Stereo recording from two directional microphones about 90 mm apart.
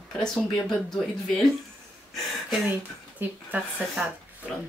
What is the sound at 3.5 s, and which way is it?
Speech, 15° right (ahead or behind).